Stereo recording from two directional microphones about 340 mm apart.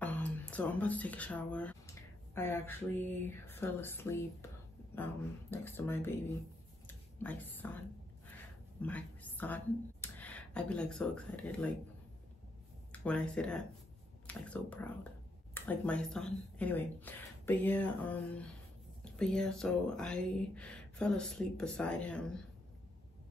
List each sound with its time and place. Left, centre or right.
0.0 s speech: centre
7.2 s speech: centre
8.8 s a woman's voice: centre
12.9 s speech: centre